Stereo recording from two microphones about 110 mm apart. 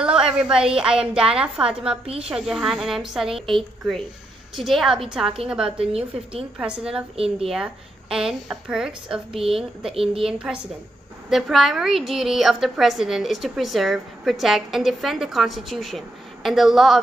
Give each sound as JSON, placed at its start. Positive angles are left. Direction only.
{"t": 0.0, "sound": "a sound", "side_deg": -10}
{"t": 0.7, "sound": "a woman's voice", "side_deg": -5}
{"t": 7.2, "sound": "speech", "side_deg": -65}
{"t": 7.4, "sound": "a woman's voice", "side_deg": -5}